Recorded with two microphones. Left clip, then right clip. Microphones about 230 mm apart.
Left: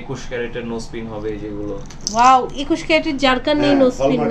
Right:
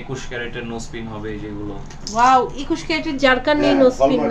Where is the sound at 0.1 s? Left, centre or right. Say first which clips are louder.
Left 3 dB; centre.